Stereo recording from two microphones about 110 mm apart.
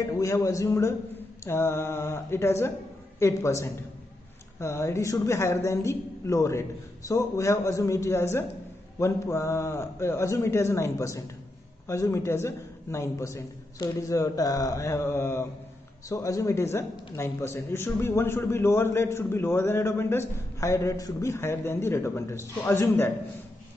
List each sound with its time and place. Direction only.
0.2 s a man's voice: 30° left (ahead or behind)